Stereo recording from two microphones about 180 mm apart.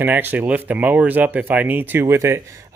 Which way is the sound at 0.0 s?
10° right (ahead or behind).